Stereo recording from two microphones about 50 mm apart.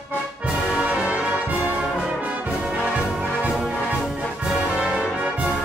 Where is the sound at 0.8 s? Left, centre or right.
Right.